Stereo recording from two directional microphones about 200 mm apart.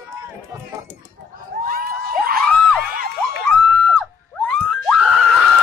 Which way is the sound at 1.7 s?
45° right (ahead or behind).